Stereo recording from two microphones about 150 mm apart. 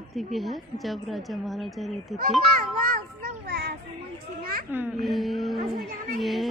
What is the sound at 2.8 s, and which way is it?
Children playing, 75° right (ahead or behind).